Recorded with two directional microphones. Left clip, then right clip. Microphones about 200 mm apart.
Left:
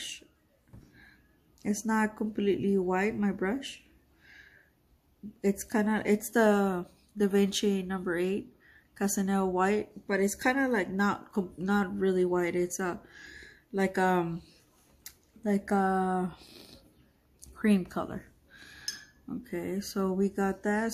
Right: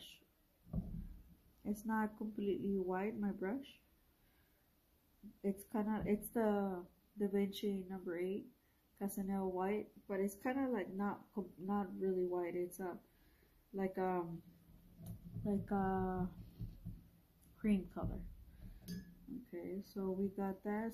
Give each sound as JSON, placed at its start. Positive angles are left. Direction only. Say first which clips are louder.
{"t": 1.6, "sound": "speech", "louder": "left 11 dB", "side_deg": 15}
{"t": 5.4, "sound": "speech", "louder": "left 12 dB", "side_deg": 20}
{"t": 15.4, "sound": "speech", "louder": "left 12 dB", "side_deg": 15}
{"t": 17.6, "sound": "speech", "louder": "left 12 dB", "side_deg": 15}
{"t": 19.5, "sound": "speech", "louder": "left 13 dB", "side_deg": 25}